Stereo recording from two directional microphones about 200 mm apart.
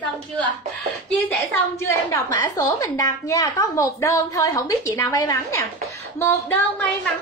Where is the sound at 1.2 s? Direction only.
5° left (ahead or behind).